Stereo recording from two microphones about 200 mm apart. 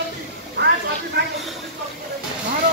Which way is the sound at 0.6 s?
60° right (ahead or behind).